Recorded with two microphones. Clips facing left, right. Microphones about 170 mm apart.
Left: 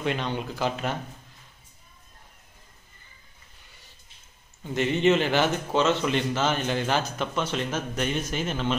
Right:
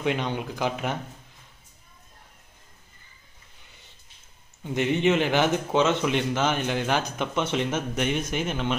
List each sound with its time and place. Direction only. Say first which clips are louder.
0.0 s a man's voice: right 1 dB; 15° right (ahead or behind)
4.6 s a man's voice: left 1 dB; 15° right (ahead or behind)